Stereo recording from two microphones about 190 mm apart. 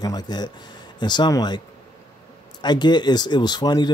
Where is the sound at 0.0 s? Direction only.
20° left (ahead or behind).